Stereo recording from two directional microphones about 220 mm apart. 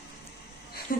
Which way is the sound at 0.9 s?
40° left (ahead or behind).